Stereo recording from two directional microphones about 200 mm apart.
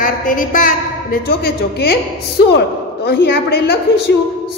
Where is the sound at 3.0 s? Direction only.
50° left (ahead or behind).